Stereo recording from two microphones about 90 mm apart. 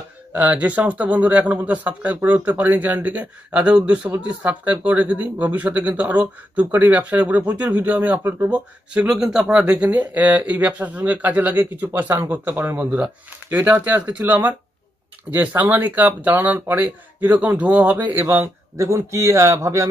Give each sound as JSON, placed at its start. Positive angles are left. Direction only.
{"t": 0.3, "sound": "speech", "side_deg": -15}
{"t": 8.2, "sound": "a man's voice", "side_deg": -30}
{"t": 8.5, "sound": "speech", "side_deg": -15}
{"t": 18.8, "sound": "a man's voice", "side_deg": -35}